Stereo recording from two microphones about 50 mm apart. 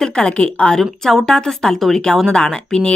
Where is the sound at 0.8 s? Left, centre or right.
Centre.